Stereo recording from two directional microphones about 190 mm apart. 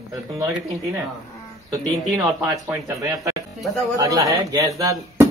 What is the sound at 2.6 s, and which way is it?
Speech, 15° right (ahead or behind).